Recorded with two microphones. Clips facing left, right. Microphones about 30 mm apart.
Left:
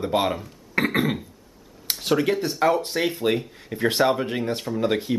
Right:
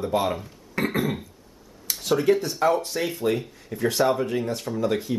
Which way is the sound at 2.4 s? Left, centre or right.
Left.